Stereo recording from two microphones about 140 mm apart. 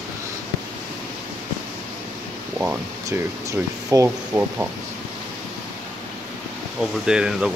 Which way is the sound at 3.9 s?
20° right (ahead or behind).